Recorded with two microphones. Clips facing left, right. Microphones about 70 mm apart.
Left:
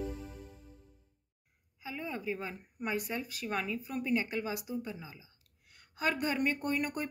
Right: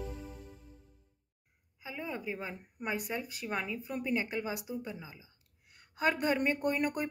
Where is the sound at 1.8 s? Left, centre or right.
Right.